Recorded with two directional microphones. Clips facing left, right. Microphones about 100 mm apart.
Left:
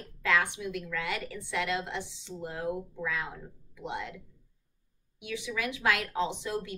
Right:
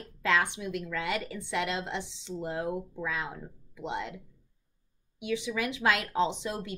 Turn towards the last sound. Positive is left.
turn(degrees=-20)  # may be behind; listen again after turning